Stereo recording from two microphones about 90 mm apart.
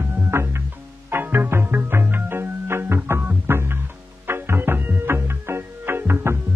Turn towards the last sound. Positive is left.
turn(degrees=-25)  # may be behind; listen again after turning